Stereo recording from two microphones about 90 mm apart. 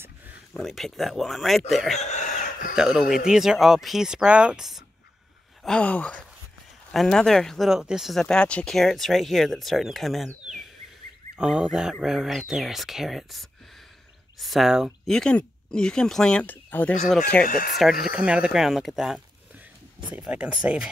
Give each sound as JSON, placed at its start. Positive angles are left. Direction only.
{"t": 0.5, "sound": "speech", "side_deg": 5}
{"t": 5.6, "sound": "speech", "side_deg": 10}
{"t": 15.0, "sound": "speech", "side_deg": 10}
{"t": 16.4, "sound": "speech", "side_deg": 20}
{"t": 17.7, "sound": "speech", "side_deg": -5}
{"t": 20.2, "sound": "speech", "side_deg": -15}